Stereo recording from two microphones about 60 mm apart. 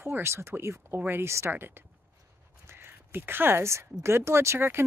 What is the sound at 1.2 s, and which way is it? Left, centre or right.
Speech, right.